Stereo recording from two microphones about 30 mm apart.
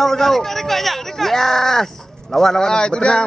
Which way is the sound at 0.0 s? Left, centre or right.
Centre.